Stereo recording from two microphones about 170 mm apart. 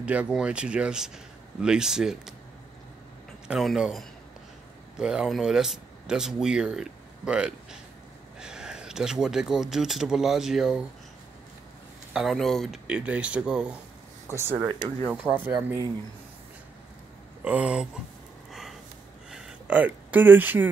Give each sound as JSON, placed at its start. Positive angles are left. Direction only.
{"t": 0.0, "sound": "speech", "side_deg": -5}
{"t": 3.4, "sound": "speech", "side_deg": 0}
{"t": 12.1, "sound": "speech", "side_deg": 0}
{"t": 17.5, "sound": "speech", "side_deg": -5}
{"t": 18.5, "sound": "gasp", "side_deg": 0}
{"t": 19.3, "sound": "speech", "side_deg": -10}